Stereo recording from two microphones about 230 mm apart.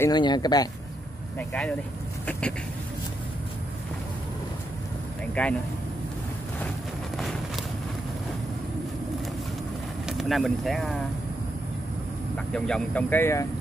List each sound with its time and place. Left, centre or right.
0.0 s speech: centre
1.5 s speech: centre
5.3 s speech: centre
10.0 s speech: centre
12.5 s speech: centre